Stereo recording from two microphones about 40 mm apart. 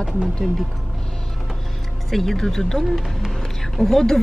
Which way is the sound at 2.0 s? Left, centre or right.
Centre.